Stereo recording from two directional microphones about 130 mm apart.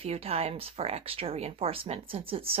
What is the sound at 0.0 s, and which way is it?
Speech, 50° right (ahead or behind).